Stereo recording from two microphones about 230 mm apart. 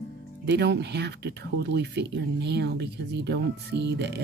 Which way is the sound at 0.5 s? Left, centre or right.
Right.